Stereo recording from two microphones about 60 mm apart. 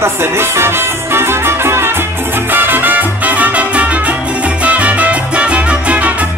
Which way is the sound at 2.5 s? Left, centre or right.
Right.